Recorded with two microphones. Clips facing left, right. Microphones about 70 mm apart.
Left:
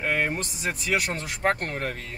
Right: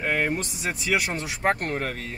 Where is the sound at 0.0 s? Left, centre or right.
Centre.